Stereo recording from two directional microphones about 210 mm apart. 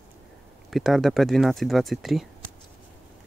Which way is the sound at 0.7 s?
Centre (ahead or behind).